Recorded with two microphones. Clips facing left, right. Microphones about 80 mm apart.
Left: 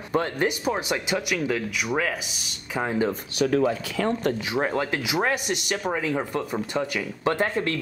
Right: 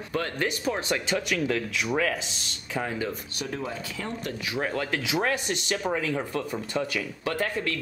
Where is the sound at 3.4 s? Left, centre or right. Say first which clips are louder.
Left 14 dB; left.